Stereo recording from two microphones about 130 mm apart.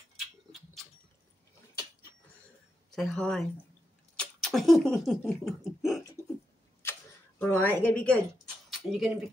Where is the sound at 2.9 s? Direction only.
5° left (ahead or behind).